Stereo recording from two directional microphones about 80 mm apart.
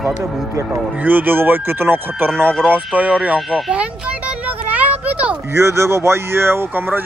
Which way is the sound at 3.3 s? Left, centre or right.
Centre.